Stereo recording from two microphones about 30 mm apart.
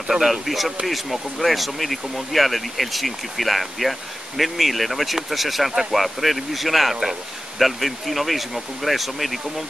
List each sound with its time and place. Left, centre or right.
0.1 s speech: centre